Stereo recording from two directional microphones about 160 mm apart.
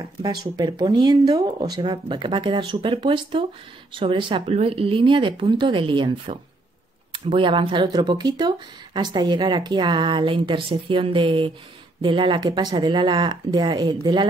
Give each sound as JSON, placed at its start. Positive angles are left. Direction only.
{"t": 0.0, "sound": "speech", "side_deg": -25}